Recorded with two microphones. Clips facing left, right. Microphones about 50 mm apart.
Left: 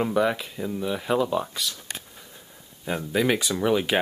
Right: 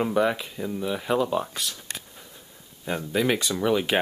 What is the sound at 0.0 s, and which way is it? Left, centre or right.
Speech, centre.